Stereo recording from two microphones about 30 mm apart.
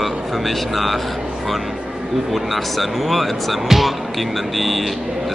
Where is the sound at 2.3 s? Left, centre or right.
Centre.